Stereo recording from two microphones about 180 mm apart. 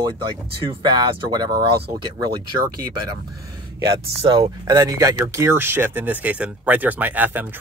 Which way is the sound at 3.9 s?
25° right (ahead or behind).